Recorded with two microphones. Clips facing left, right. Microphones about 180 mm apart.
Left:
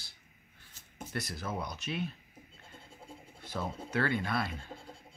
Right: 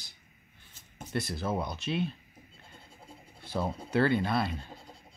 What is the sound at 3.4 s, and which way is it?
Speech, 30° right (ahead or behind).